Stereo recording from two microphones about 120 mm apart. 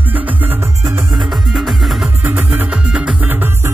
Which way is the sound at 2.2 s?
15° right (ahead or behind).